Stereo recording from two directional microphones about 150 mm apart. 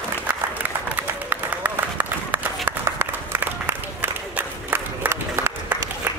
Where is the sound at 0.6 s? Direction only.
10° right (ahead or behind).